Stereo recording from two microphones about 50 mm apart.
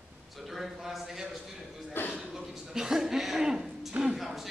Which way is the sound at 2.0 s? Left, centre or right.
Left.